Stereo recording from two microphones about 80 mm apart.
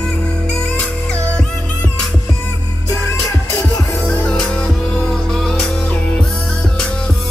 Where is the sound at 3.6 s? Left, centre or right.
Centre.